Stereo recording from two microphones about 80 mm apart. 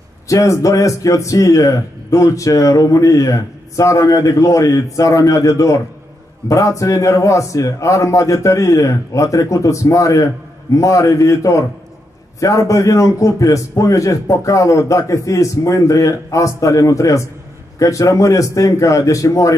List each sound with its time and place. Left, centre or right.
0.3 s a man's voice: left